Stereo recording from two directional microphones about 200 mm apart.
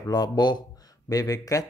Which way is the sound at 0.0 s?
20° left (ahead or behind).